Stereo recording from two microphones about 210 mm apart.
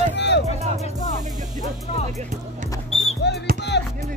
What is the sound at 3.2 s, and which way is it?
Music, 55° left (ahead or behind).